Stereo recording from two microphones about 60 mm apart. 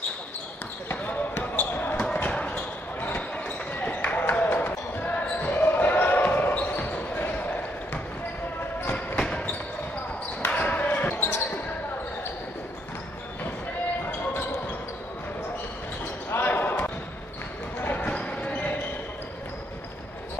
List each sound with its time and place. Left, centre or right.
1.3 s a sound: left
2.0 s basketball bounce: left
8.8 s basketball bounce: left
16.3 s basketball bounce: left